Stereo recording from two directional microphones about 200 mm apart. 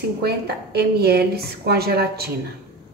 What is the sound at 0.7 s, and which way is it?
A woman's voice, 55° right (ahead or behind).